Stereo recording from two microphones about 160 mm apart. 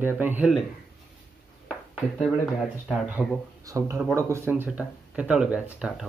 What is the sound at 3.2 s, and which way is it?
Speech, 5° right (ahead or behind).